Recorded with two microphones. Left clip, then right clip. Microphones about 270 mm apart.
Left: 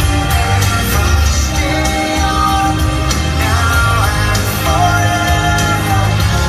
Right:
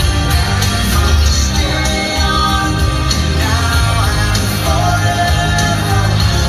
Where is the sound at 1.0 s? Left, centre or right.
Centre.